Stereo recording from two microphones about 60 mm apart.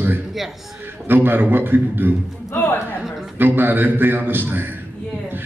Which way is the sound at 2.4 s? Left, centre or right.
Left.